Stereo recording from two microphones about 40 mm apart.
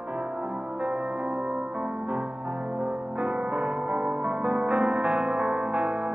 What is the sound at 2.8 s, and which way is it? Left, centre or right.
Music, right.